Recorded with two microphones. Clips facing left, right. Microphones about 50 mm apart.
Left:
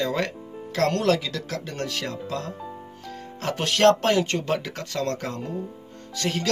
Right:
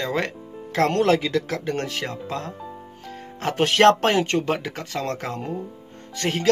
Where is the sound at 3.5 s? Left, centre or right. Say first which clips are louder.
Right 3 dB; right.